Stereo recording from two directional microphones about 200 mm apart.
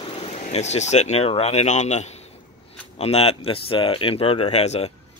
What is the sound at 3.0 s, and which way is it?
Speech, 30° left (ahead or behind).